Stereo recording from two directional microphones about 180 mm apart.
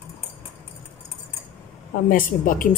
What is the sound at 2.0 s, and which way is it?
Speech, 50° left (ahead or behind).